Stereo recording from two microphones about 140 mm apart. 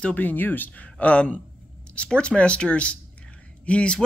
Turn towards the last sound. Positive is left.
turn(degrees=10)  # may be behind; listen again after turning